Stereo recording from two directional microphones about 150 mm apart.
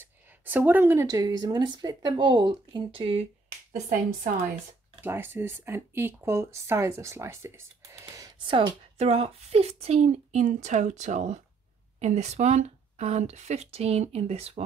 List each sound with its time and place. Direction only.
0.0 s a sound: 10° right (ahead or behind)
1.0 s speech: 25° right (ahead or behind)
3.7 s speech: 55° right (ahead or behind)
5.0 s speech: 15° right (ahead or behind)
8.5 s a woman's voice: 35° right (ahead or behind)